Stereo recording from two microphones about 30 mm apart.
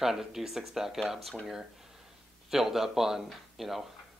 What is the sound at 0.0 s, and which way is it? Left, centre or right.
Speech, centre.